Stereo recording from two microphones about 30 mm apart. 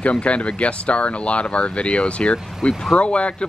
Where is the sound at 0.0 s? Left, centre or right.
Left.